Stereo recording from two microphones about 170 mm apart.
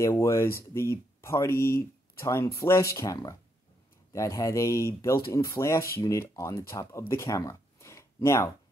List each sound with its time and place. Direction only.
0.0 s speech: 15° left (ahead or behind)